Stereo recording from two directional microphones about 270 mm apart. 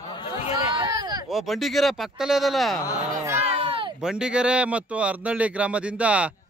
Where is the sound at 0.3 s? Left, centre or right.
Centre.